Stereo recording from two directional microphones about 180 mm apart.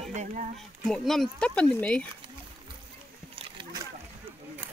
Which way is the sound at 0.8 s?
Centre (ahead or behind).